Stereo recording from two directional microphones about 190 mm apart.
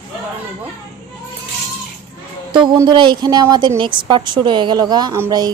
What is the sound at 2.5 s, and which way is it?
A woman's voice, 25° right (ahead or behind).